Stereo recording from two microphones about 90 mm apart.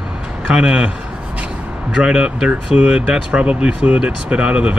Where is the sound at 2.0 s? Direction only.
10° right (ahead or behind).